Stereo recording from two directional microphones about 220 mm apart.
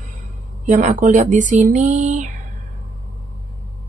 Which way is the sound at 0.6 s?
35° right (ahead or behind).